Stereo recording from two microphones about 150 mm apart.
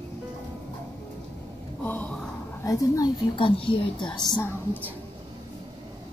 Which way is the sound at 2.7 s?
20° left (ahead or behind).